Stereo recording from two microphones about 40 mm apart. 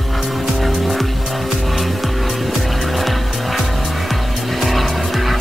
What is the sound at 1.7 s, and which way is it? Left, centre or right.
Vehicle, centre.